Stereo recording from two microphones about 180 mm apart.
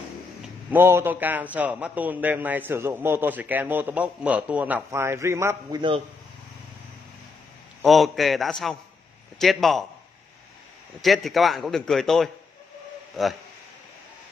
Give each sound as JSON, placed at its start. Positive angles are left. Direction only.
{"t": 0.4, "sound": "a man's voice", "side_deg": -10}
{"t": 5.8, "sound": "a man's voice", "side_deg": -25}
{"t": 7.8, "sound": "a man's voice", "side_deg": 0}
{"t": 11.0, "sound": "a man's voice", "side_deg": 0}